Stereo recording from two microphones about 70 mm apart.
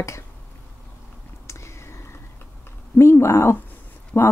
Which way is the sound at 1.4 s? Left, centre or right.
Left.